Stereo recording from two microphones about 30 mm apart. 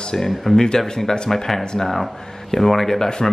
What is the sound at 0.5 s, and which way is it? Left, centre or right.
Speech, left.